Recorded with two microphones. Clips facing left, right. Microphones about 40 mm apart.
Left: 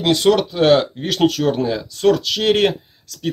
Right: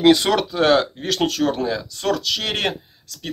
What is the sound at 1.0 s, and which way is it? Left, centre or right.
Speech, left.